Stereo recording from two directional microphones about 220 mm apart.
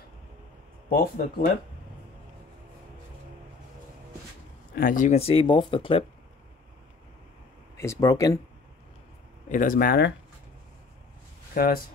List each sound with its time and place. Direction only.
0.8 s speech: 40° left (ahead or behind)
4.7 s speech: 40° left (ahead or behind)
7.7 s speech: 10° left (ahead or behind)
9.5 s speech: 35° left (ahead or behind)
11.5 s speech: 40° left (ahead or behind)